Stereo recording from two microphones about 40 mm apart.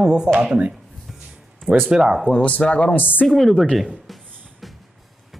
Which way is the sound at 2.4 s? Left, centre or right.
Left.